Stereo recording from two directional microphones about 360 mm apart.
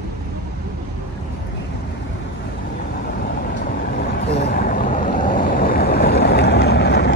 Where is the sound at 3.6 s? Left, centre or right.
Left.